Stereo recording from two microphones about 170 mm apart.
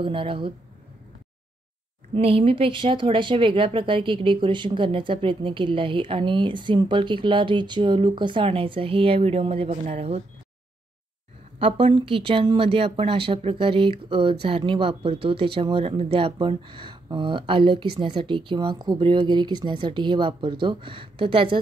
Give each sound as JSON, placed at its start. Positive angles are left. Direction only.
{"t": 0.0, "sound": "speech", "side_deg": -30}
{"t": 2.1, "sound": "speech", "side_deg": -35}
{"t": 11.6, "sound": "speech", "side_deg": -30}